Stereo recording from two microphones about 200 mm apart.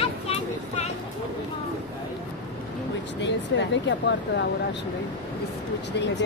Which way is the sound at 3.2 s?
60° left (ahead or behind).